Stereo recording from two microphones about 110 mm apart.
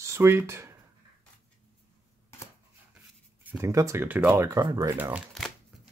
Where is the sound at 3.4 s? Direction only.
25° right (ahead or behind).